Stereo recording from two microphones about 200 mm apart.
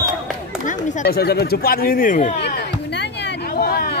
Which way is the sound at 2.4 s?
55° left (ahead or behind).